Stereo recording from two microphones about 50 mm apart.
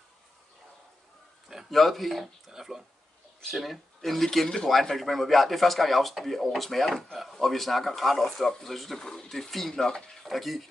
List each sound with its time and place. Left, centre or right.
1.7 s speech: centre